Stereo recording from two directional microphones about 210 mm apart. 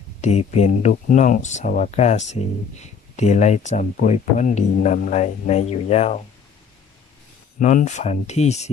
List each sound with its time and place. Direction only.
0.2 s speech: 30° left (ahead or behind)
7.5 s speech: 35° left (ahead or behind)